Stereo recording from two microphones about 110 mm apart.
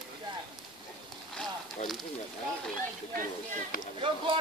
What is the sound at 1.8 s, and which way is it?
Speech, 90° left.